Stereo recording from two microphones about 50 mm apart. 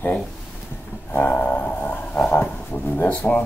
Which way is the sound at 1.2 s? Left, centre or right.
Left.